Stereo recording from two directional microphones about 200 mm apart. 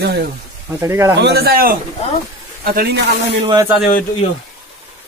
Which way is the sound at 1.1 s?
55° right (ahead or behind).